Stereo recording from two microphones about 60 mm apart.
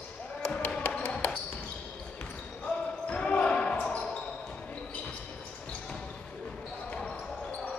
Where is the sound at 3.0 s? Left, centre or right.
Centre.